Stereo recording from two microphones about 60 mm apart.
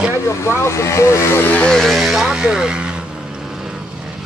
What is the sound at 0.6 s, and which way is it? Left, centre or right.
Speech, left.